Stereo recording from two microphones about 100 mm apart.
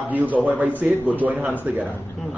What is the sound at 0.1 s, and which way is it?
A man's voice, 15° right (ahead or behind).